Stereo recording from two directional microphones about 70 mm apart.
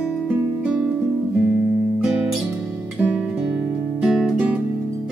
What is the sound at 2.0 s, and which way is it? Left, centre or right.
Music, centre.